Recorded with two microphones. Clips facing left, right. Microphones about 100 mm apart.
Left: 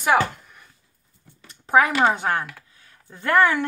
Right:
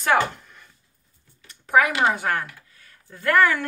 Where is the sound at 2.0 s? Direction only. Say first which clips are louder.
Left 1 dB; 25° left (ahead or behind).